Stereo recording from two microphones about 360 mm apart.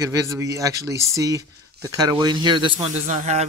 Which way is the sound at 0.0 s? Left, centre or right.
Centre.